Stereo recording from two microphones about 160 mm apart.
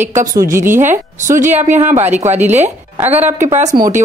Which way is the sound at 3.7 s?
60° right (ahead or behind).